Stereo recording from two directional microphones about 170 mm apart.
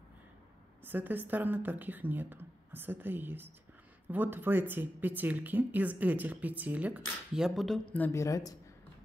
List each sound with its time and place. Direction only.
0.8 s speech: 10° right (ahead or behind)
7.9 s speech: 15° left (ahead or behind)